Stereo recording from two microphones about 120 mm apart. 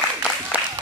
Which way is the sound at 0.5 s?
10° right (ahead or behind).